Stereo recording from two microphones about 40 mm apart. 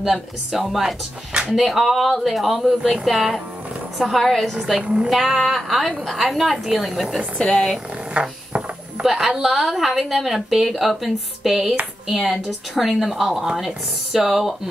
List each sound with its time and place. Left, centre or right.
0.0 s a woman's voice: centre
4.2 s a woman's voice: centre
4.7 s a woman's voice: right
5.1 s a woman's voice: centre
7.3 s speech: left
8.1 s a sound: right
9.0 s a woman's voice: centre